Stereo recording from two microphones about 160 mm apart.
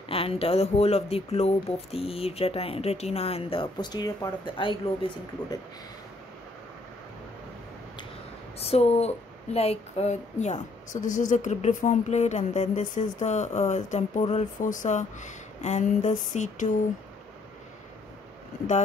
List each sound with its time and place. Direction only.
0.1 s speech: 35° left (ahead or behind)
8.5 s speech: 40° left (ahead or behind)